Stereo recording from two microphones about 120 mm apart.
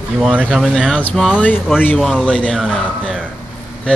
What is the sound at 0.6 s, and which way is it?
Speech, centre (ahead or behind).